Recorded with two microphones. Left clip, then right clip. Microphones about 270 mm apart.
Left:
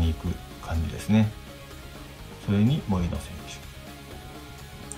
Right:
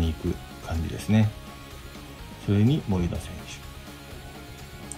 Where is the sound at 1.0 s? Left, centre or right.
Centre.